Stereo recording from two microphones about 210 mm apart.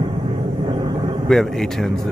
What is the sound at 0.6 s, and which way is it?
Vehicle, 20° right (ahead or behind).